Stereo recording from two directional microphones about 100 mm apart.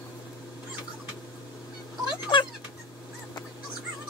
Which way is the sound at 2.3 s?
55° left (ahead or behind).